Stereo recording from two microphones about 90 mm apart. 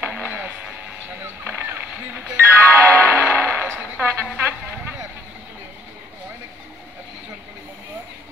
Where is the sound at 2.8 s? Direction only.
25° right (ahead or behind).